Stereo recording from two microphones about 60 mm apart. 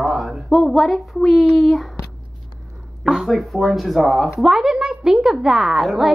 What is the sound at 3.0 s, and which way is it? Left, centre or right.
Speech, centre.